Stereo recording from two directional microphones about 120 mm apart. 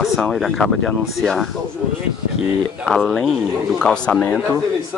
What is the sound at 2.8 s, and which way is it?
Speech, centre (ahead or behind).